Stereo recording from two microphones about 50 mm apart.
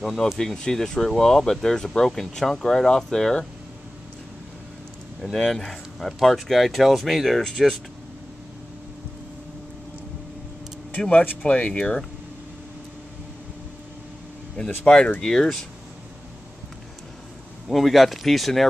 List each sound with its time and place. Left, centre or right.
0.0 s speech: centre
5.5 s speech: centre
11.0 s speech: left
14.6 s speech: left
15.1 s speech: centre
17.6 s speech: centre